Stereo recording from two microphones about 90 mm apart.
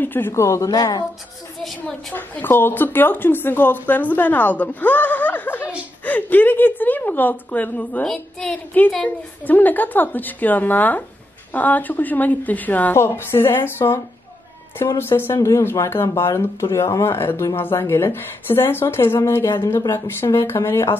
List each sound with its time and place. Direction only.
0.0 s speech: 25° left (ahead or behind)
0.7 s speech: 50° left (ahead or behind)
1.6 s a woman's voice: 5° left (ahead or behind)
2.1 s speech: 20° left (ahead or behind)
8.0 s a woman's voice: 10° left (ahead or behind); by 21.0 s 25° left (ahead or behind)